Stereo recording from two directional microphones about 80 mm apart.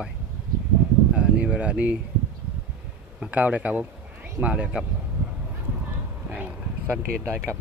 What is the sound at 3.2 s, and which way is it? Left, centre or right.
Speech, centre.